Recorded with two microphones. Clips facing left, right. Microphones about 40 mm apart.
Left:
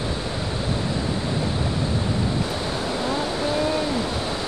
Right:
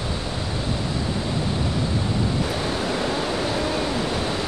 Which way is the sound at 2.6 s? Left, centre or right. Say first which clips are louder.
Right 1 dB; right.